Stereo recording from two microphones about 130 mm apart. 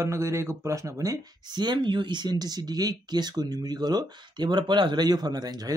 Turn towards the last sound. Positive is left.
turn(degrees=-30)  # may be behind; listen again after turning